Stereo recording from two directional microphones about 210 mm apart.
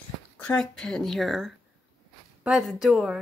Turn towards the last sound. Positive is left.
turn(degrees=0)  # may be behind; listen again after turning